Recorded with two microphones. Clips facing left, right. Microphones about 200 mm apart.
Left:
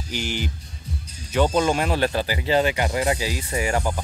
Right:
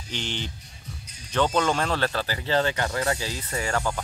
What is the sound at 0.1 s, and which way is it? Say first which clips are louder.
Speech: left 4 dB; 10° left (ahead or behind).